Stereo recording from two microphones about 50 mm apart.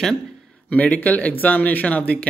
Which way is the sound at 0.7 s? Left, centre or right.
Left.